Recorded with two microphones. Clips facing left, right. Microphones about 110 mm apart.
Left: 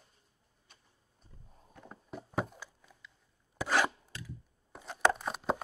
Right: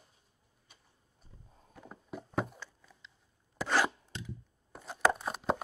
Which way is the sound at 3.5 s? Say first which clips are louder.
Even; 5° left (ahead or behind).